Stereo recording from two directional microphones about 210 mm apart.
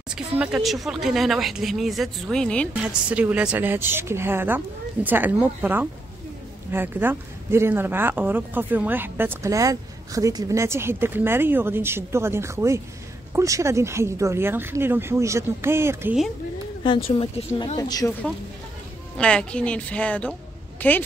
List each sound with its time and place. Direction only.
0.1 s speech: 5° right (ahead or behind)
16.8 s a woman's voice: 25° left (ahead or behind)
17.7 s speech: 20° left (ahead or behind)
19.1 s speech: 5° left (ahead or behind)